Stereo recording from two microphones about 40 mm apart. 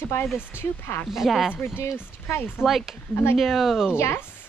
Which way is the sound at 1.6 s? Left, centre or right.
Left.